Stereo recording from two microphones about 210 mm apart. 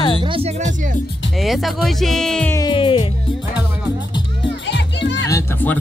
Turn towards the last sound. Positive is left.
turn(degrees=10)  # may be behind; listen again after turning